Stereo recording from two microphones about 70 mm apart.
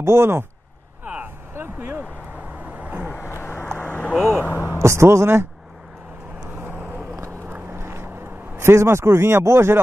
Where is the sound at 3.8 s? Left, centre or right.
Left.